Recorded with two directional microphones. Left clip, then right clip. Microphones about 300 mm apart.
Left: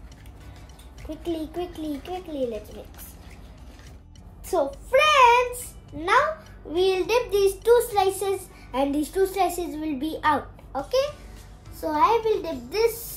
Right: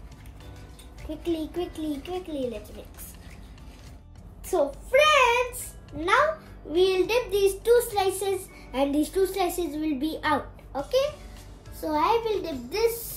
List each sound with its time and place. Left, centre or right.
1.3 s a child's voice: centre
4.5 s a sound: centre
6.7 s a child's voice: centre